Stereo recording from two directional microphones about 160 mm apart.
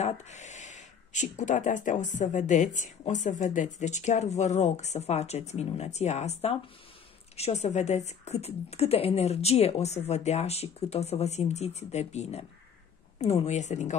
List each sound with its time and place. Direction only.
0.0 s a woman's voice: 45° left (ahead or behind)